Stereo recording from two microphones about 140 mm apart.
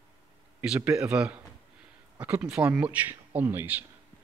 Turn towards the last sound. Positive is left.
turn(degrees=-15)  # may be behind; listen again after turning